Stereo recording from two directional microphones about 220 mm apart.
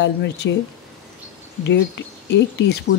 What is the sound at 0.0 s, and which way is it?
Speech, 50° left (ahead or behind).